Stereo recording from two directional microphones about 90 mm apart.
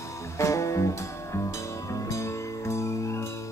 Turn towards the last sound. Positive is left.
turn(degrees=30)  # may be behind; listen again after turning